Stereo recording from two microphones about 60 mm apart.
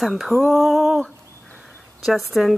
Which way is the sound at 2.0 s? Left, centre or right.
Centre.